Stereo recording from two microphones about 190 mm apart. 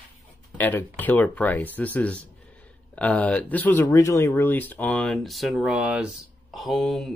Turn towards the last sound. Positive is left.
turn(degrees=0)  # may be behind; listen again after turning